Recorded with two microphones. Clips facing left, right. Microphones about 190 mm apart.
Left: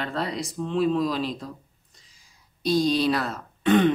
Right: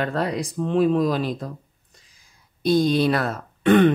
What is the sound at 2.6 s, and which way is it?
Speech, 55° right (ahead or behind).